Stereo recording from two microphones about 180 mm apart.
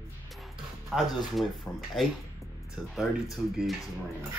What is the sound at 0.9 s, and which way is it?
Speech, centre (ahead or behind).